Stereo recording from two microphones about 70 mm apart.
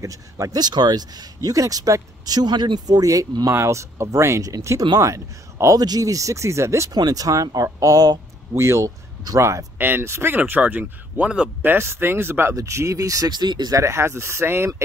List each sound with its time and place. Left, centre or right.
0.0 s speech: right
0.6 s speech: right
3.5 s speech: right
5.8 s speech: right
6.9 s speech: right
8.5 s speech: right
9.8 s speech: right; by 11.5 s centre
11.6 s speech: right
12.5 s speech: right
13.3 s speech: right
13.7 s speech: right